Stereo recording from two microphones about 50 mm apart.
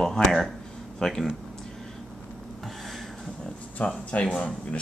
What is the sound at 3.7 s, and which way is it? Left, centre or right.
Speech, left.